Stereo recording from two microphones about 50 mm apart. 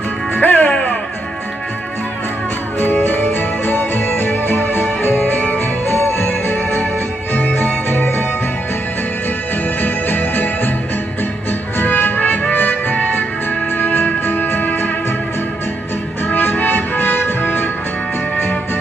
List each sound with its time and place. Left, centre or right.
0.3 s music: left
2.8 s music: left
9.8 s music: left
11.8 s music: left
16.3 s music: left